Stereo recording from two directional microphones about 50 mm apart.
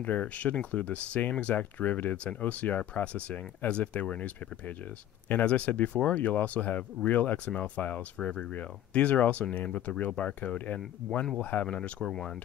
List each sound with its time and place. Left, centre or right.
0.0 s speech: left
8.2 s speech: centre
8.5 s speech: left
12.0 s speech: centre